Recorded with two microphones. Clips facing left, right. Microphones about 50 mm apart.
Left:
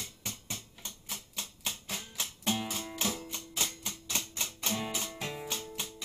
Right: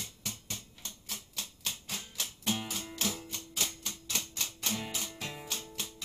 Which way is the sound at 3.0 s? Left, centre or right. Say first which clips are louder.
Left 1 dB; centre.